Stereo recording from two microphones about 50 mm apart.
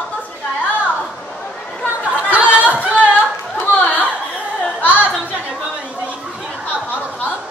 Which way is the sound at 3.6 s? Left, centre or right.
Left.